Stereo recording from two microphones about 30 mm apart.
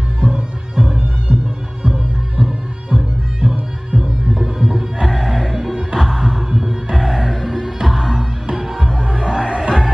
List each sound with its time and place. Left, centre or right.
0.2 s music: right
4.6 s music: centre
5.9 s heart sounds: centre
6.6 s music: right
7.0 s music: centre
9.0 s music: right